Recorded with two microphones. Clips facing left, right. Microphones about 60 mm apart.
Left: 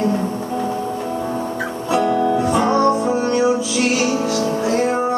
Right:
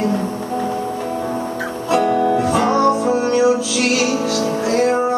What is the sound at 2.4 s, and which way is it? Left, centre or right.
Music, right.